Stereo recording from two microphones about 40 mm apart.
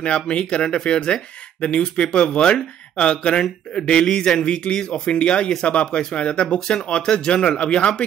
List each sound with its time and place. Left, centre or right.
0.0 s speech: left